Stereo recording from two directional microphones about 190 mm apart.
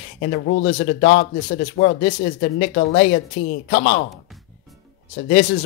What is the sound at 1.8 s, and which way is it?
Speech, 55° left (ahead or behind).